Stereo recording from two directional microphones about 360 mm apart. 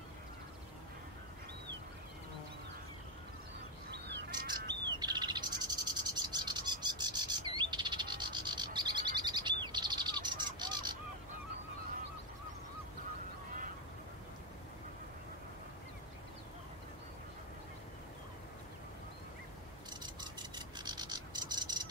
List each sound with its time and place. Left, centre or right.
3.9 s bird: right
4.9 s owl: centre
19.9 s a sound: centre